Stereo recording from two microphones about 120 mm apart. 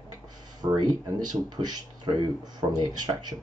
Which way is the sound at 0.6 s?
35° right (ahead or behind).